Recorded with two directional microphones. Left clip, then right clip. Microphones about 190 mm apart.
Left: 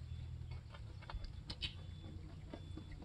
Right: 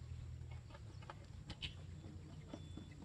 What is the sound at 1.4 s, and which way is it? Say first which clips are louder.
Vehicle: left 4 dB; 55° left (ahead or behind).